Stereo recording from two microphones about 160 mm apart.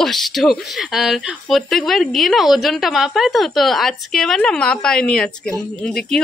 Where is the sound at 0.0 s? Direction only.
Centre (ahead or behind).